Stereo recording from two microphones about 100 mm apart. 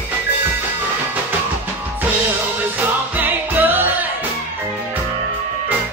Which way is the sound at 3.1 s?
20° right (ahead or behind).